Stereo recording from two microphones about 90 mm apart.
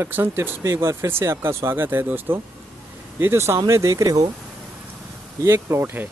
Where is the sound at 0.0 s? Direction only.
25° right (ahead or behind); by 4.3 s 40° right (ahead or behind).